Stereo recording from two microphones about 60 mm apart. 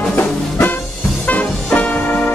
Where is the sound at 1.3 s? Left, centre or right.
Left.